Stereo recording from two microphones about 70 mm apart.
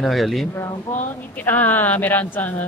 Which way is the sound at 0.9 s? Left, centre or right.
Left.